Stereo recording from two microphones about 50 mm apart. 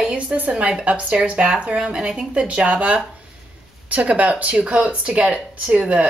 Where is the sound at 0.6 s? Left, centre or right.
Right.